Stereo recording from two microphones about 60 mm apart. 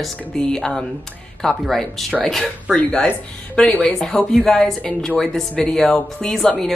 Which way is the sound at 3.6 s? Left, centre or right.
Centre.